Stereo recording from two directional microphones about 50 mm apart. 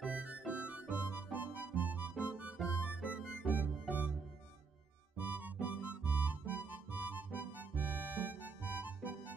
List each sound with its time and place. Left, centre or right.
0.0 s music: right
3.5 s music: right
5.1 s music: right